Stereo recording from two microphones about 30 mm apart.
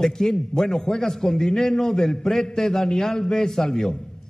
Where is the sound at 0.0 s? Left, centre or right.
Centre.